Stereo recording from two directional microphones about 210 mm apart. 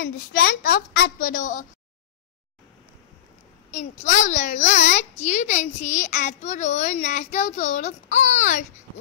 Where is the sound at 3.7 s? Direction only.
35° left (ahead or behind).